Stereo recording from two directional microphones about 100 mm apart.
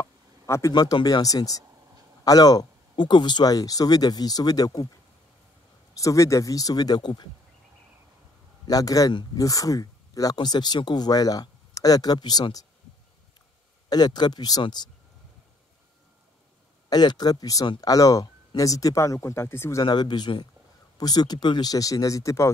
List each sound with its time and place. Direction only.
0.0 s a sound: 30° left (ahead or behind)
0.7 s speech: 45° left (ahead or behind)
5.9 s speech: 35° left (ahead or behind)
8.6 s speech: 35° left (ahead or behind)
13.8 s speech: 45° left (ahead or behind)
16.9 s speech: 45° left (ahead or behind); by 19.8 s 25° left (ahead or behind)
19.8 s speech: 45° left (ahead or behind)